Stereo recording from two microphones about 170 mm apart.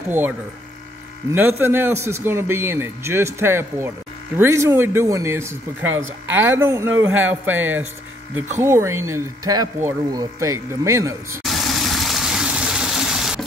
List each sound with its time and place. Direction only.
1.6 s speech: 15° right (ahead or behind)
11.4 s gush: centre (ahead or behind)